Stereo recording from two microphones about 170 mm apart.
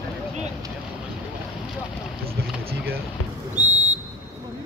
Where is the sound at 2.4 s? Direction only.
65° right (ahead or behind).